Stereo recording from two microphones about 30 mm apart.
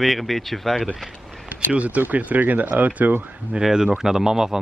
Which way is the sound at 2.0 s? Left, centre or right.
Right.